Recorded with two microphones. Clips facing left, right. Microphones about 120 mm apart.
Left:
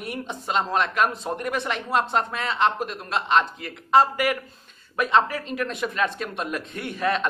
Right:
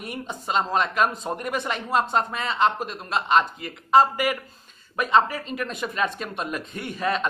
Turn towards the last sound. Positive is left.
turn(degrees=0)  # may be behind; listen again after turning